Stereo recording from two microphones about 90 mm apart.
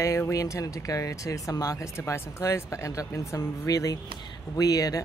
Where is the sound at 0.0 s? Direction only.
35° left (ahead or behind).